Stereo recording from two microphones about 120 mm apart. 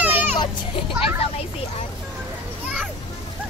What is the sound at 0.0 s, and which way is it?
Music, 15° right (ahead or behind).